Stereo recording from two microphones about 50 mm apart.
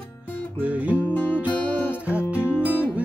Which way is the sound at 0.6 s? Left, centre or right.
Right.